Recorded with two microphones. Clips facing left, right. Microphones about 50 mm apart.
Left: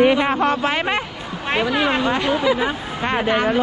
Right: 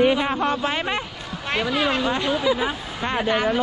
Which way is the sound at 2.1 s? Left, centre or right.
Left.